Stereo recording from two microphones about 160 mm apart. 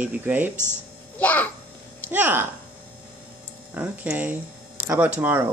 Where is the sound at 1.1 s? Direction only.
10° left (ahead or behind).